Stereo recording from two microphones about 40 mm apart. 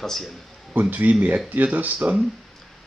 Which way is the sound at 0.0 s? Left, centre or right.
Centre.